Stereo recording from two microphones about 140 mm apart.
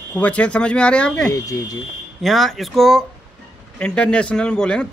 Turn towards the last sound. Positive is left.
turn(degrees=5)  # may be behind; listen again after turning